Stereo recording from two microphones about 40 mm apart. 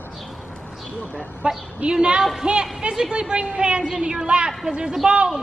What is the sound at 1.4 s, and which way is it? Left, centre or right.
A woman's voice, right.